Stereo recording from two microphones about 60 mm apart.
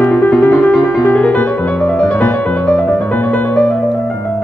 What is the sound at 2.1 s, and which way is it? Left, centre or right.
Music, left.